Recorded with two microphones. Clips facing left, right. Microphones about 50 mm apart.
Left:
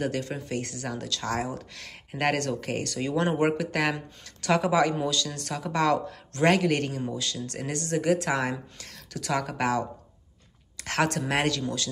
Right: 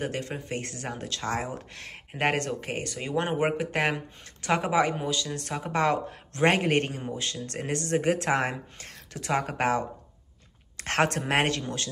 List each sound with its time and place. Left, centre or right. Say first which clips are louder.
0.0 s speech: left 2 dB; right